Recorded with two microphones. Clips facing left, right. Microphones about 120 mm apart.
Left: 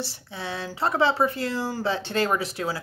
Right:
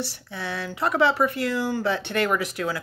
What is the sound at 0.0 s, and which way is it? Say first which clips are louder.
Speech: right 2 dB; 25° left (ahead or behind).